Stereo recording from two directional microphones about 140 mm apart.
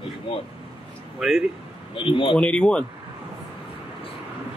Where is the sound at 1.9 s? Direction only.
35° left (ahead or behind).